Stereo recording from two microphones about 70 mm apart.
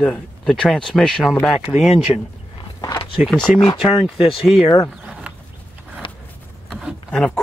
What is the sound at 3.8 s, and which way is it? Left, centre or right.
Speech, centre.